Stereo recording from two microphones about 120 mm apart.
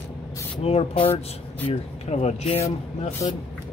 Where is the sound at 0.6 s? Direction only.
55° left (ahead or behind).